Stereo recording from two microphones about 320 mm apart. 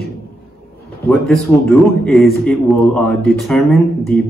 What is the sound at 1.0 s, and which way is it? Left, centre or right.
Speech, centre.